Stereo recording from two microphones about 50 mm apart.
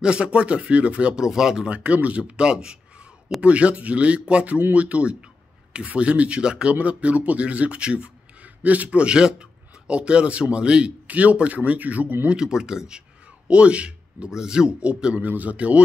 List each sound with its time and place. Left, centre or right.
0.0 s speech: right
1.7 s speech: right
12.3 s speech: centre
15.1 s speech: right